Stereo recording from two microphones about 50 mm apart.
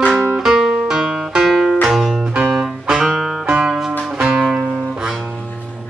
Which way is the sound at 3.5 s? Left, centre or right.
Centre.